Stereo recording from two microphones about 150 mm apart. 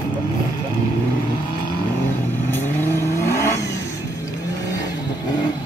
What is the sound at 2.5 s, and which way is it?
Vehicle, 15° left (ahead or behind).